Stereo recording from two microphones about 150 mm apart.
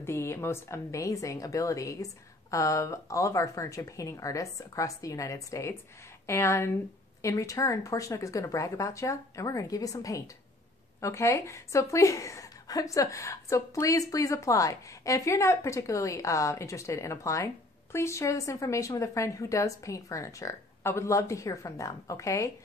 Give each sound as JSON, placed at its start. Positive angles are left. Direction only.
{"t": 0.0, "sound": "a woman's voice", "side_deg": 15}